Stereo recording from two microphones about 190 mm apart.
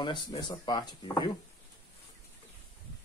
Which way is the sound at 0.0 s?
25° left (ahead or behind).